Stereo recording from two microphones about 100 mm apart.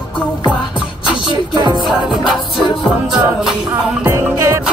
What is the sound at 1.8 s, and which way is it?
Music, centre (ahead or behind).